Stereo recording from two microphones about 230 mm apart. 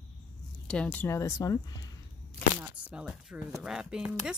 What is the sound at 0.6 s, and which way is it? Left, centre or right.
Speech, centre.